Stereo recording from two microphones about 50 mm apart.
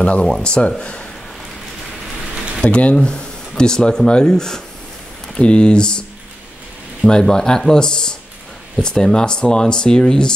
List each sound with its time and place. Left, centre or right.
0.0 s speech: left
2.6 s speech: left
7.1 s speech: centre